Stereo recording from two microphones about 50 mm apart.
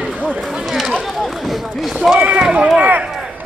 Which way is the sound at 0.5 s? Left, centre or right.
Centre.